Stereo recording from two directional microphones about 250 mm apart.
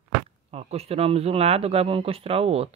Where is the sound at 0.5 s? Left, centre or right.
Right.